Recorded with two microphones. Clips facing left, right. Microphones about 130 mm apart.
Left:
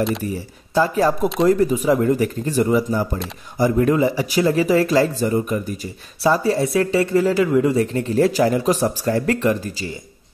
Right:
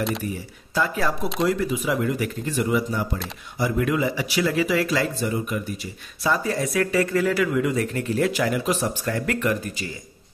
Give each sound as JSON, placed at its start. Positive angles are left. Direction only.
{"t": 0.2, "sound": "speech", "side_deg": 35}